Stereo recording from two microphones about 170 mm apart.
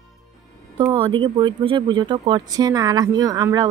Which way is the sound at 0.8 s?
30° right (ahead or behind).